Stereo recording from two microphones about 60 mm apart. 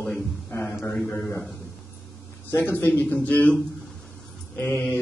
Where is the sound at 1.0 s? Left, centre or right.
Left.